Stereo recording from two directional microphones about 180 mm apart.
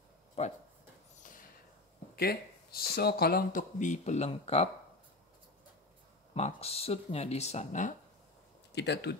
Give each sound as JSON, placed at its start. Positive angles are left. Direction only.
{"t": 0.4, "sound": "speech", "side_deg": 35}
{"t": 1.2, "sound": "a sound", "side_deg": 50}
{"t": 2.1, "sound": "speech", "side_deg": 60}
{"t": 6.3, "sound": "speech", "side_deg": 35}
{"t": 8.7, "sound": "speech", "side_deg": 70}